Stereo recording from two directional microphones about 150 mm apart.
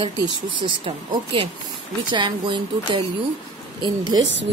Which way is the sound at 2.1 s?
30° right (ahead or behind).